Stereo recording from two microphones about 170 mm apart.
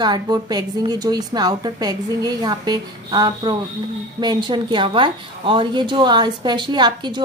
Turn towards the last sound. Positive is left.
turn(degrees=-25)  # may be behind; listen again after turning